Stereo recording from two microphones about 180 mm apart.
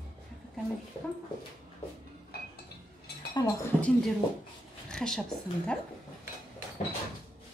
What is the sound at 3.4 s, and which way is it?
Speech, 20° left (ahead or behind).